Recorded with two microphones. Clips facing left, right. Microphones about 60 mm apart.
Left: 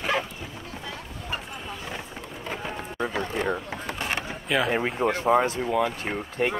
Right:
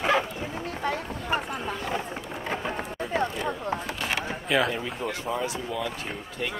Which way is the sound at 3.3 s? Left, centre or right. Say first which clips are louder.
Left 1 dB; left.